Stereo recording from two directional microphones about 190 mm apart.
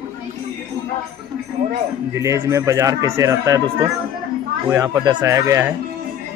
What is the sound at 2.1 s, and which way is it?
A man's voice, 15° right (ahead or behind).